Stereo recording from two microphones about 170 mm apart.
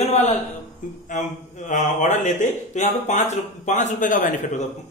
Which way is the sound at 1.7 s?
45° left (ahead or behind).